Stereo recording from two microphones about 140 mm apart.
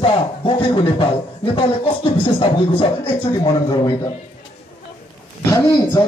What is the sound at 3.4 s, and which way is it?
Speech, 30° left (ahead or behind).